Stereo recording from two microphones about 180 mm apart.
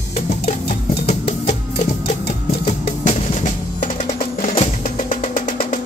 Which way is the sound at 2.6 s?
45° left (ahead or behind).